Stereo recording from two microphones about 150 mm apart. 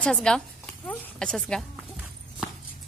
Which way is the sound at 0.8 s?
5° left (ahead or behind).